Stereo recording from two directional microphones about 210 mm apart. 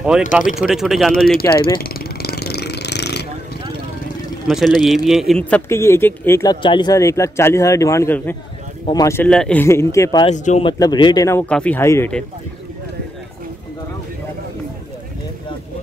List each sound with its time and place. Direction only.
0.1 s a man's voice: 5° right (ahead or behind)
1.5 s speech: 20° left (ahead or behind)
1.8 s a sound: 45° left (ahead or behind)
4.5 s a man's voice: centre (ahead or behind)
10.2 s speech: 35° left (ahead or behind)
10.6 s a man's voice: 20° left (ahead or behind)